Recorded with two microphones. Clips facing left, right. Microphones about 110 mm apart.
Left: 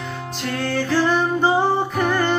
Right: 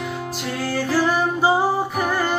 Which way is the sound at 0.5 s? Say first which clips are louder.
Left 2 dB; 5° right (ahead or behind).